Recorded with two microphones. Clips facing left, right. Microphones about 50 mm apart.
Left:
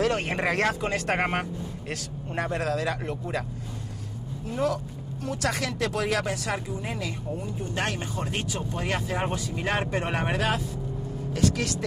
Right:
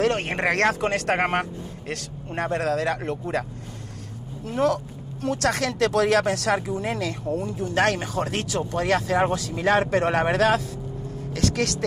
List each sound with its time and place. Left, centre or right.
0.0 s speech: right
4.5 s speech: right